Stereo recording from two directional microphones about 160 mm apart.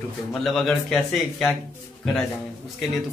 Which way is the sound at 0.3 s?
Centre (ahead or behind).